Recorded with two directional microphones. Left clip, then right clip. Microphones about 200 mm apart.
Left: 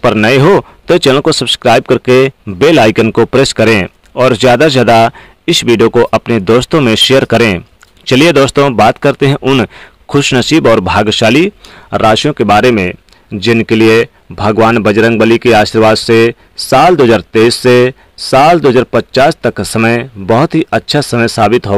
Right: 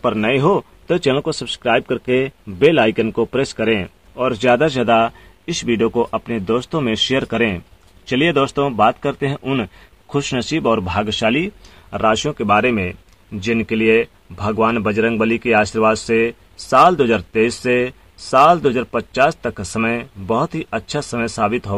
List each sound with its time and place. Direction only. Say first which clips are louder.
0.0 s speech: left 9 dB; 45° left (ahead or behind)